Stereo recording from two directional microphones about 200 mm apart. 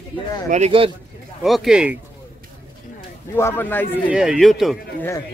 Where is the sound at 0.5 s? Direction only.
30° right (ahead or behind).